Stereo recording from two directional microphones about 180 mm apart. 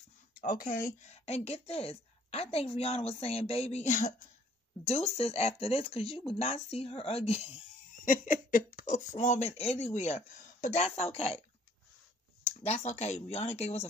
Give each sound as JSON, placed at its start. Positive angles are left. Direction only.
{"t": 0.3, "sound": "speech", "side_deg": 50}
{"t": 1.0, "sound": "a woman's voice", "side_deg": 35}
{"t": 7.9, "sound": "laughter", "side_deg": 50}
{"t": 8.8, "sound": "a woman's voice", "side_deg": 45}
{"t": 12.4, "sound": "a woman's voice", "side_deg": 40}